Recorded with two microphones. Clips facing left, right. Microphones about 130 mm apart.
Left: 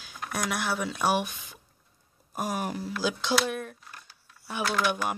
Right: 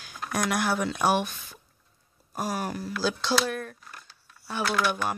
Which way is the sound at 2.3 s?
20° left (ahead or behind).